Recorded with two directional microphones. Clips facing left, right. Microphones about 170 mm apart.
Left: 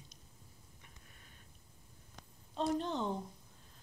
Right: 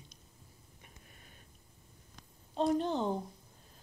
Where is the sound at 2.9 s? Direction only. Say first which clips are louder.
Right 4 dB; 35° right (ahead or behind).